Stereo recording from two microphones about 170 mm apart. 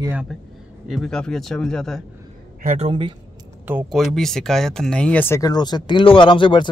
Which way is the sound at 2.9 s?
30° right (ahead or behind).